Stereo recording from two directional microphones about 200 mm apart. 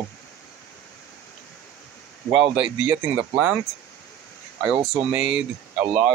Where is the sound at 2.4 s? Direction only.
25° right (ahead or behind).